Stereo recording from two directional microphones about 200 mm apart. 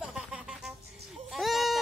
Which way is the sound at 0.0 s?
5° right (ahead or behind).